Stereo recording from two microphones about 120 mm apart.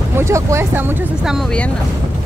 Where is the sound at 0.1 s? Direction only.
25° right (ahead or behind).